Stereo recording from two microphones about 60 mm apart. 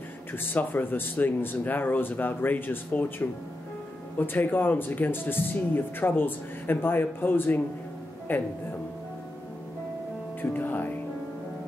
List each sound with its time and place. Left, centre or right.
0.3 s speech: left
10.4 s speech: left